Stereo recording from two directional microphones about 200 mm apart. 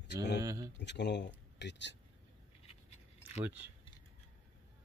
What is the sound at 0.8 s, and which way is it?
Speech, 60° left (ahead or behind).